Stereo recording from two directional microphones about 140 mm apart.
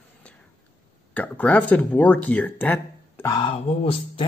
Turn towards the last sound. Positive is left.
turn(degrees=40)  # may be behind; listen again after turning